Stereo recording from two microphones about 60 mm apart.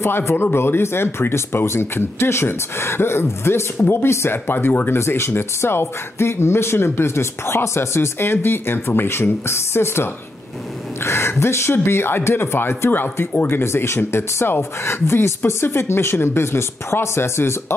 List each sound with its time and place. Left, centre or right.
0.0 s speech: left
11.1 s speech: left